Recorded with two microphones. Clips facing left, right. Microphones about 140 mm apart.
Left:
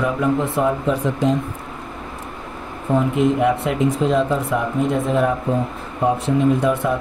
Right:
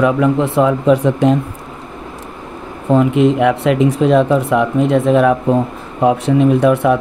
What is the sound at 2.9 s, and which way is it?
Speech, 80° right.